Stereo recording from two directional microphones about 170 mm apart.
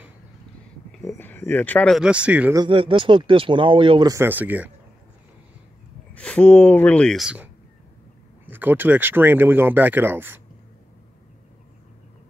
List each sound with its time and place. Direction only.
1.0 s speech: 10° left (ahead or behind); by 2.5 s 5° right (ahead or behind)
2.5 s speech: 25° right (ahead or behind); by 4.6 s 10° right (ahead or behind)
6.1 s speech: 5° left (ahead or behind)
8.5 s speech: 10° right (ahead or behind)